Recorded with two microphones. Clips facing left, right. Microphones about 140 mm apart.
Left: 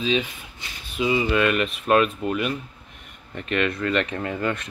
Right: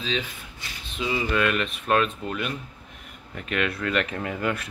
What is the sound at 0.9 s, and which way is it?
Speech, 5° left (ahead or behind).